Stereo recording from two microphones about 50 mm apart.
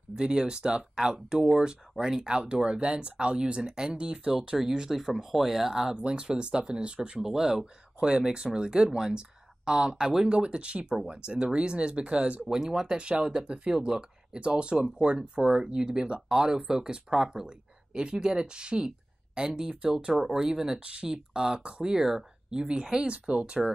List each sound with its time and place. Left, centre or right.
0.1 s speech: centre
4.6 s speech: centre
5.9 s speech: centre
7.2 s speech: centre
12.4 s speech: centre
14.4 s speech: right